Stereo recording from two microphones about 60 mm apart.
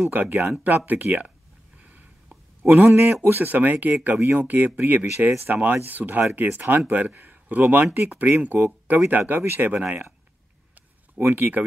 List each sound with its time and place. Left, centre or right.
0.1 s speech: right
1.8 s a sound: right
2.6 s speech: right
11.3 s speech: right